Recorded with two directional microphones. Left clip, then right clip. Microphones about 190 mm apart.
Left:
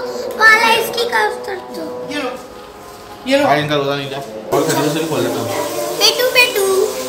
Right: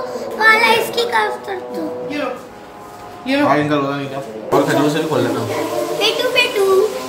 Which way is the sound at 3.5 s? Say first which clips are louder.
Left 1 dB; 25° left (ahead or behind).